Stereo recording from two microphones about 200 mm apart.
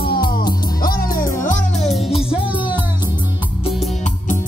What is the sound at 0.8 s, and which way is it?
Music, 45° left (ahead or behind).